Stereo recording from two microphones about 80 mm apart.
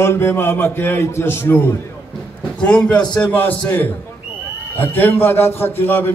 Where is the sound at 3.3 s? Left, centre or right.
Left.